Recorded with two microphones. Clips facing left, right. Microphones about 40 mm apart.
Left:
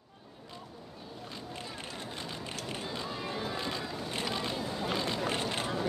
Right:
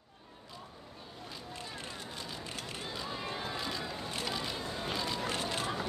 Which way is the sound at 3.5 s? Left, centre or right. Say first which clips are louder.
Left 2 dB; centre.